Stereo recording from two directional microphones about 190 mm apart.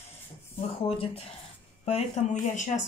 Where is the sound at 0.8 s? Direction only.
30° left (ahead or behind).